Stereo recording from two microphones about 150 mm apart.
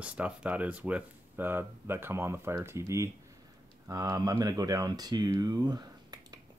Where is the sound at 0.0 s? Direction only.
10° right (ahead or behind).